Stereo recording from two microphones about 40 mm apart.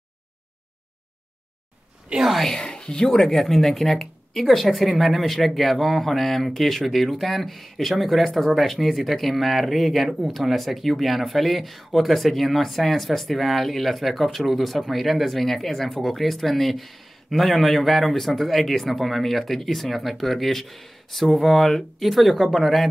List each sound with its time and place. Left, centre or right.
2.3 s speech: centre
2.6 s speech: centre
3.3 s speech: centre